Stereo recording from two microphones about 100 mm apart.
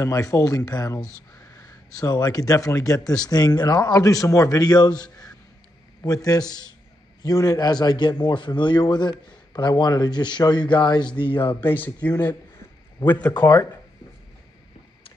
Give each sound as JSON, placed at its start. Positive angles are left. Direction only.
{"t": 0.0, "sound": "a man's voice", "side_deg": 30}
{"t": 11.6, "sound": "speech", "side_deg": 20}
{"t": 12.1, "sound": "a man's voice", "side_deg": 45}
{"t": 13.0, "sound": "speech", "side_deg": 15}